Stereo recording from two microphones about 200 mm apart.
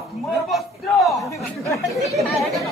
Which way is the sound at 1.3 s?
15° left (ahead or behind).